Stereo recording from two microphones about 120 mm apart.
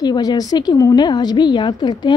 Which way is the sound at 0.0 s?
35° left (ahead or behind).